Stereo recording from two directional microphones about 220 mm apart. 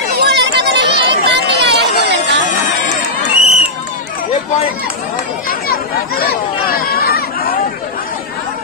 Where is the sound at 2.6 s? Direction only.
35° left (ahead or behind).